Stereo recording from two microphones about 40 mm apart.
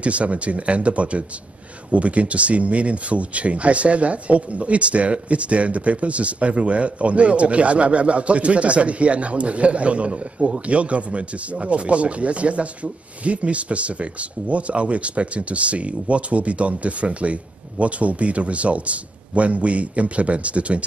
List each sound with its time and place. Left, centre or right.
0.0 s speech: right